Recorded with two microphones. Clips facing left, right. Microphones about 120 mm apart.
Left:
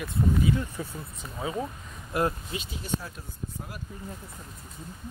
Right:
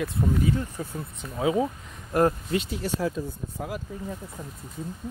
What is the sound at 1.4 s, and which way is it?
Speech, 90° right.